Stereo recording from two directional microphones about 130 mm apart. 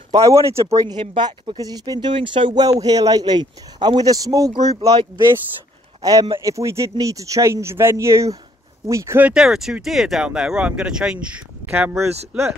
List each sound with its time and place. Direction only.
0.1 s speech: 25° right (ahead or behind)
0.9 s speech: 40° right (ahead or behind); by 9.3 s 20° right (ahead or behind)
9.3 s speech: 5° right (ahead or behind)